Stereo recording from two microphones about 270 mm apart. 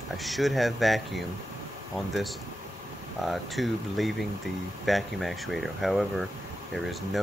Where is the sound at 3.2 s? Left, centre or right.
Centre.